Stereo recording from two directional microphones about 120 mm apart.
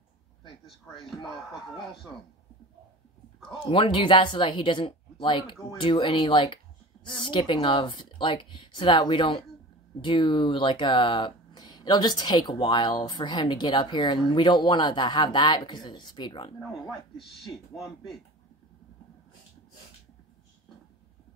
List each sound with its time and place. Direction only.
0.9 s speech: 5° left (ahead or behind)
3.4 s speech: 45° left (ahead or behind)